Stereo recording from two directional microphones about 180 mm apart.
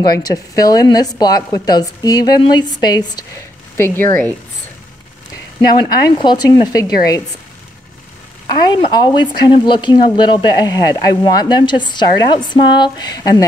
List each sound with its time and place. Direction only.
0.0 s a woman's voice: 20° left (ahead or behind)
5.8 s a woman's voice: 25° left (ahead or behind)
8.7 s a woman's voice: 25° left (ahead or behind)